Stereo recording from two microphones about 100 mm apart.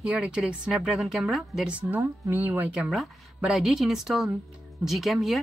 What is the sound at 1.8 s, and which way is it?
A woman's voice, 20° right (ahead or behind).